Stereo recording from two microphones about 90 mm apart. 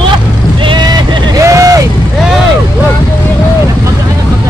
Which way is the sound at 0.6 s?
55° right (ahead or behind).